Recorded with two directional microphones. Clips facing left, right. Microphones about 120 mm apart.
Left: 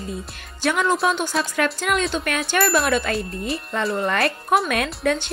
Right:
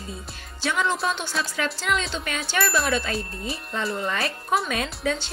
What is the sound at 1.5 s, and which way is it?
Speech, 55° left (ahead or behind).